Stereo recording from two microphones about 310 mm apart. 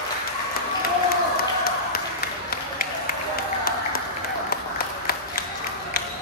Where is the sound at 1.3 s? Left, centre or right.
Left.